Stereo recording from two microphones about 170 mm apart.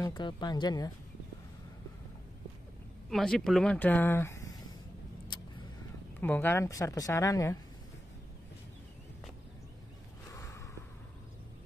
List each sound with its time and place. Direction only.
0.0 s speech: 25° left (ahead or behind)
3.1 s speech: centre (ahead or behind)
6.2 s speech: 10° left (ahead or behind)
10.3 s snort: 20° left (ahead or behind)